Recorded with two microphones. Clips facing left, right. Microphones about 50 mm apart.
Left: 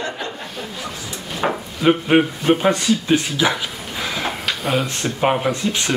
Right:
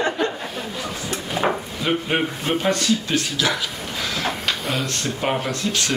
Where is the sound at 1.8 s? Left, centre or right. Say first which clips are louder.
Left 7 dB; left.